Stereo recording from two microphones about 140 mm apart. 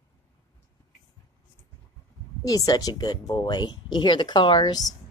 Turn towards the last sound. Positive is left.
turn(degrees=30)  # may be behind; listen again after turning